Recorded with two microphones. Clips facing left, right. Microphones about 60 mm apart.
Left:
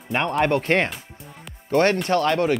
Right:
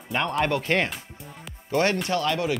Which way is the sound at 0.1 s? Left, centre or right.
Left.